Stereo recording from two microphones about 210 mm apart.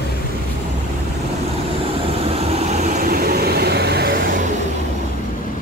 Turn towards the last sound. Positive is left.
turn(degrees=-50)  # may be behind; listen again after turning